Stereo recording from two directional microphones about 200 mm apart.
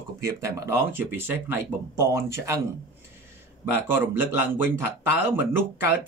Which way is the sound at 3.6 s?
10° right (ahead or behind).